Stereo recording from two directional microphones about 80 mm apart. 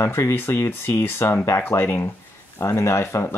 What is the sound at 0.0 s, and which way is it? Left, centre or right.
Speech, left.